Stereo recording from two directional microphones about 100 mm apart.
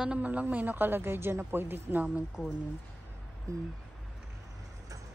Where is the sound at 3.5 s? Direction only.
35° right (ahead or behind).